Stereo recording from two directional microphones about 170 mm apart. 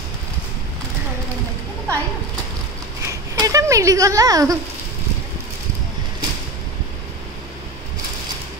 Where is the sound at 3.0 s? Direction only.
20° right (ahead or behind).